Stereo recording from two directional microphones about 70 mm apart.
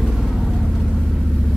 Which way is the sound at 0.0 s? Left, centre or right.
Centre.